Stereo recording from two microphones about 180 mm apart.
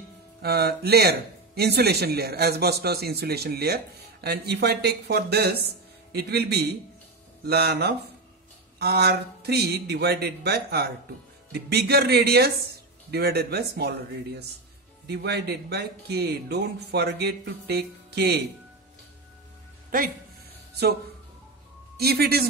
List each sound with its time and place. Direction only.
0.4 s speech: 60° right (ahead or behind)
21.9 s a man's voice: 60° right (ahead or behind)